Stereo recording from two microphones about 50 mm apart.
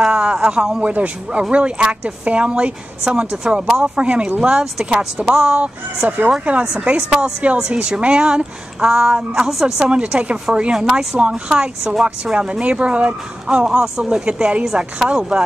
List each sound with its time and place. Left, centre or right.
0.0 s a sound: centre
0.8 s a woman's voice: right; by 5.3 s centre
5.3 s a woman's voice: right
6.0 s speech: right
6.8 s a woman's voice: right
9.5 s a woman's voice: centre
9.8 s a woman's voice: right
14.6 s speech: centre